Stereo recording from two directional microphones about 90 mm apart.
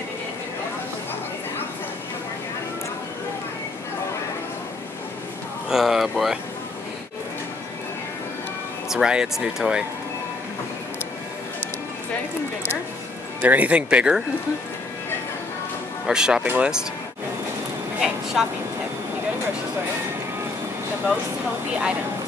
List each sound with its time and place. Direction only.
5.7 s speech: 5° right (ahead or behind)
8.8 s speech: 5° right (ahead or behind)
13.4 s speech: 15° right (ahead or behind)
16.1 s speech: 10° right (ahead or behind)
18.0 s a sound: 5° right (ahead or behind)